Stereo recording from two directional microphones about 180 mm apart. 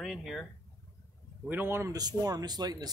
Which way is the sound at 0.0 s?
Centre (ahead or behind).